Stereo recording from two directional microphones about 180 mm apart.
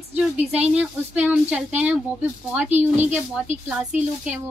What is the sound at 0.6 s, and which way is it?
A woman's voice, 10° right (ahead or behind).